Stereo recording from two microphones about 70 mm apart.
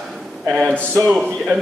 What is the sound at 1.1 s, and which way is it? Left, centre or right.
Speech, centre.